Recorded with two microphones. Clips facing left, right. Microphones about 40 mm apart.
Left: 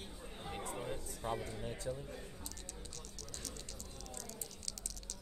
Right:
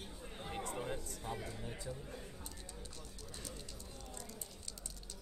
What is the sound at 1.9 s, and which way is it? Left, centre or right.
Speech, centre.